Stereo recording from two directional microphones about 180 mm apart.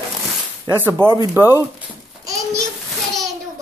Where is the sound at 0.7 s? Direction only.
10° right (ahead or behind).